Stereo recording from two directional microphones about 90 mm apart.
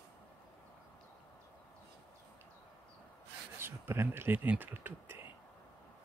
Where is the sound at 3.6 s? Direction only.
25° right (ahead or behind).